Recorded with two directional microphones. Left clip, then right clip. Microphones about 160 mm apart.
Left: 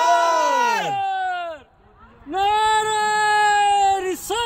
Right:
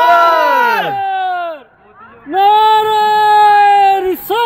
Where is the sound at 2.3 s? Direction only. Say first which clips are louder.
Right 10 dB; centre (ahead or behind).